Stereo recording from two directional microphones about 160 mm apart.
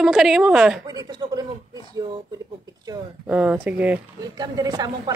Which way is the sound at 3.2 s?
10° right (ahead or behind).